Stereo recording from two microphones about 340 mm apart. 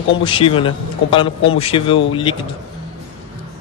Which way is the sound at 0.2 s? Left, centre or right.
Centre.